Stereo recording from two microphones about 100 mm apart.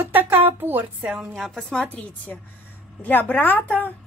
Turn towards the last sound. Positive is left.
turn(degrees=15)  # may be behind; listen again after turning